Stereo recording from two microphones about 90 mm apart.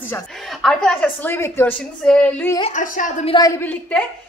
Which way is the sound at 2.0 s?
10° left (ahead or behind).